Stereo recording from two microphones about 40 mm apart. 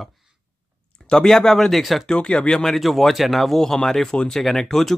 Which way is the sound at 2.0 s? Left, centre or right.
Left.